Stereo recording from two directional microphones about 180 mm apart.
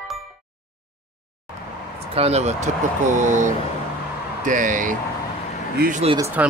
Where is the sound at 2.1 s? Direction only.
35° right (ahead or behind); by 6.0 s 50° right (ahead or behind).